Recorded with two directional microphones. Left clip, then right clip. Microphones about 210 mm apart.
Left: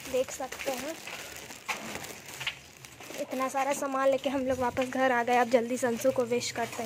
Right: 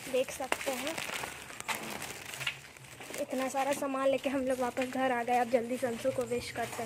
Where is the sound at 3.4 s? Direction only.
5° left (ahead or behind).